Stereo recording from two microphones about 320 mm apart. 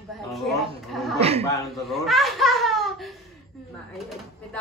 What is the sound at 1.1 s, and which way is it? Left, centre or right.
Speech, centre.